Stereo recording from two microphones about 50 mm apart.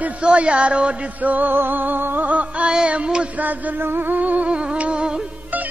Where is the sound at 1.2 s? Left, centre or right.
Right.